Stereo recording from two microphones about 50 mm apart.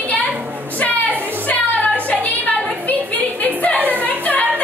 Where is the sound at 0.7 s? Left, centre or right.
Left.